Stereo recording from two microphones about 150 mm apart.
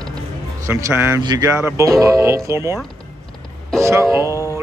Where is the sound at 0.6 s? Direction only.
20° right (ahead or behind).